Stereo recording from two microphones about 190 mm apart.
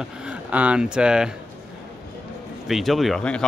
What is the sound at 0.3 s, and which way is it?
Speech, 5° right (ahead or behind).